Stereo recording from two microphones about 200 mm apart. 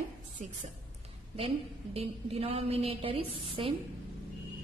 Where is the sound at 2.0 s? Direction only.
30° right (ahead or behind).